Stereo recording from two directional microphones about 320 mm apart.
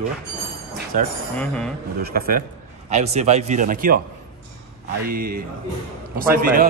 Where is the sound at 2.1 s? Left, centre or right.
Right.